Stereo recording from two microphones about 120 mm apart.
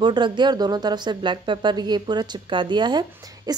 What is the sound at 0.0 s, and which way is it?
A woman's voice, 40° right (ahead or behind).